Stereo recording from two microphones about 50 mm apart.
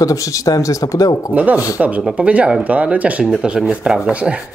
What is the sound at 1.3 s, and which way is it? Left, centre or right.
Speech, right.